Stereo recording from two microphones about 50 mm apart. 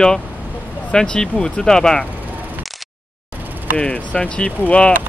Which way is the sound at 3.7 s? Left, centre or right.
Left.